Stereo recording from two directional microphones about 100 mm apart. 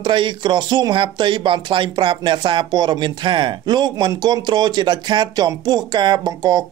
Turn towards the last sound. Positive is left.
turn(degrees=-45)  # may be behind; listen again after turning